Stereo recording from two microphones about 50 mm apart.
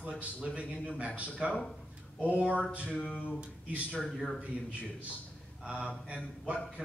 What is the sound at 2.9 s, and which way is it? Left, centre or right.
Speech, left.